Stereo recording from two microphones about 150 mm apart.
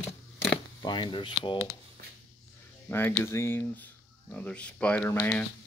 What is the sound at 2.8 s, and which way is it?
Speech, 15° left (ahead or behind).